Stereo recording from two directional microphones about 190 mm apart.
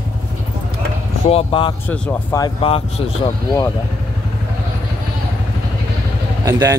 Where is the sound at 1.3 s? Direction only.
25° left (ahead or behind).